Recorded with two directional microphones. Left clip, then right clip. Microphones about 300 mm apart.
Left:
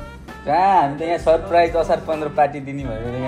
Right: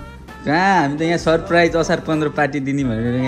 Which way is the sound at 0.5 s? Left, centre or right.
Right.